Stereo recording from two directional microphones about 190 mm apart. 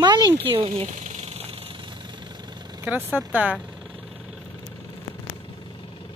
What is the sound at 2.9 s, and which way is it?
Speech, 5° right (ahead or behind).